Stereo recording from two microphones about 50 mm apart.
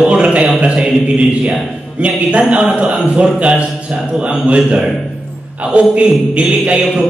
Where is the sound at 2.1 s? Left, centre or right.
Right.